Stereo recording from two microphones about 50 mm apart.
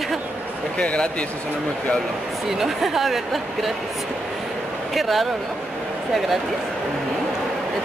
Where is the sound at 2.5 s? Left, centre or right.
Centre.